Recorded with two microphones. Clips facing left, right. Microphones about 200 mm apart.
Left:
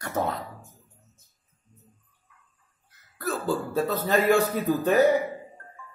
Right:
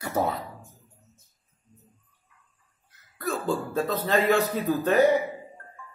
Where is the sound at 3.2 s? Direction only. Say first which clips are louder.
Even; 5° left (ahead or behind).